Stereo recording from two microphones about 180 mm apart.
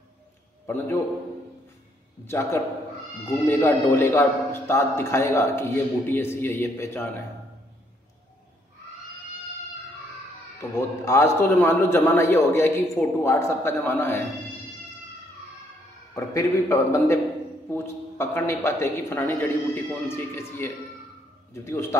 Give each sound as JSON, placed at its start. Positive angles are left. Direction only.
{"t": 0.7, "sound": "a man's voice", "side_deg": 15}
{"t": 2.2, "sound": "a man's voice", "side_deg": 15}
{"t": 11.1, "sound": "a man's voice", "side_deg": 15}
{"t": 16.2, "sound": "a man's voice", "side_deg": 15}